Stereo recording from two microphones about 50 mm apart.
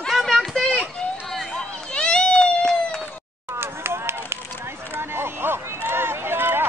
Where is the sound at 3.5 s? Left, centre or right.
Right.